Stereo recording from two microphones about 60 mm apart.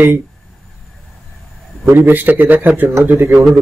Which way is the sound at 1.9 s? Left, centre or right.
Right.